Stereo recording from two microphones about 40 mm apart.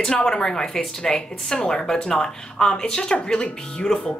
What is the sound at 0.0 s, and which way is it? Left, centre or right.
A woman's voice, centre.